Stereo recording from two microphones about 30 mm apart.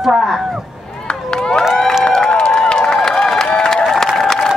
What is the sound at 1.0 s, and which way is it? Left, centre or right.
Run, left.